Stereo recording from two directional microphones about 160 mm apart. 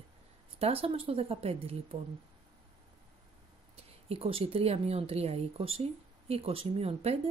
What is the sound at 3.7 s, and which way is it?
A woman's voice, 35° right (ahead or behind).